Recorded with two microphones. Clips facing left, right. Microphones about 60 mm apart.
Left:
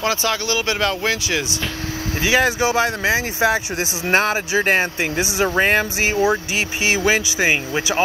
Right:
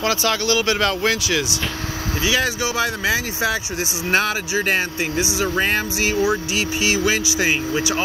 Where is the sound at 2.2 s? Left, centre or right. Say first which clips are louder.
Left 4 dB; left.